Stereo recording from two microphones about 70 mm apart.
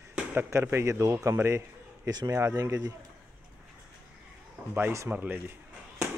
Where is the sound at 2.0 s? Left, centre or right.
Right.